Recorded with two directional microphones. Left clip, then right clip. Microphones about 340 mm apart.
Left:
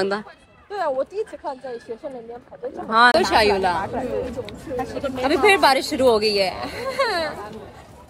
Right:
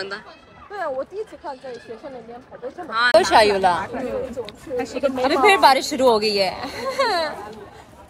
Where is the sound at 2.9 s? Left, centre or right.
Centre.